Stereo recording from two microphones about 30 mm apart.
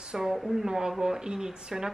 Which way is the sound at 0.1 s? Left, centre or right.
Centre.